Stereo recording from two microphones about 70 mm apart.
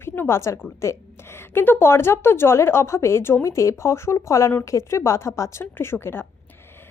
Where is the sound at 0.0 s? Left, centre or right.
Left.